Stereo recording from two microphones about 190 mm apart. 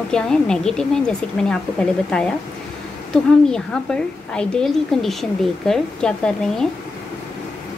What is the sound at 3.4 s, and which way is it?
A woman's voice, 5° left (ahead or behind).